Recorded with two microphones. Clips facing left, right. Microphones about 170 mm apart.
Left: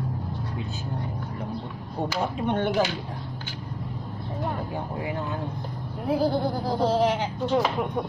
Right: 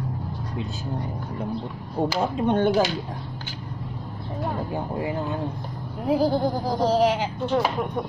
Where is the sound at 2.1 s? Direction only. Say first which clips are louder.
Right 3 dB; 40° right (ahead or behind).